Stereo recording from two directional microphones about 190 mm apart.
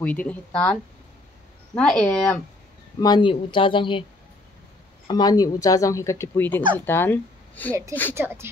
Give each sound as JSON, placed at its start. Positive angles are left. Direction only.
{"t": 0.0, "sound": "speech", "side_deg": 10}
{"t": 1.8, "sound": "speech", "side_deg": 5}
{"t": 3.0, "sound": "speech", "side_deg": 25}
{"t": 5.0, "sound": "speech", "side_deg": 20}
{"t": 8.1, "sound": "speech", "side_deg": -15}